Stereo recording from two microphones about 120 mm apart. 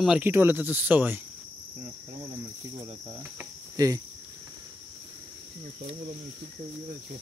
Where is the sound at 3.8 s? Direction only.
35° right (ahead or behind).